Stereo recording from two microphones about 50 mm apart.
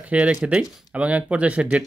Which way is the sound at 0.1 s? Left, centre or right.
Right.